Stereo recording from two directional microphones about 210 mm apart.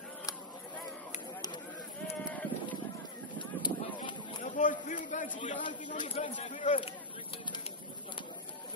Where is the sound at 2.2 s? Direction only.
5° left (ahead or behind).